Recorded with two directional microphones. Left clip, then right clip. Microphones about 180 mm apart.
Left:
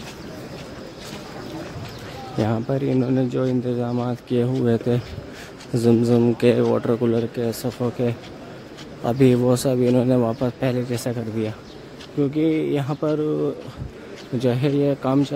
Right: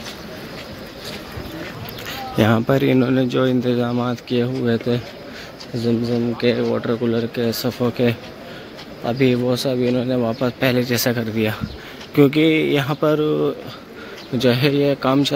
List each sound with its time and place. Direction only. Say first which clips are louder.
2.3 s speech: right 7 dB; 5° right (ahead or behind)
4.3 s speech: left 1 dB; 20° left (ahead or behind)
5.9 s speech: left 3 dB; 30° left (ahead or behind); by 8.2 s 5° left (ahead or behind)
9.0 s speech: even; 25° left (ahead or behind)
10.2 s speech: right 3 dB; 10° left (ahead or behind)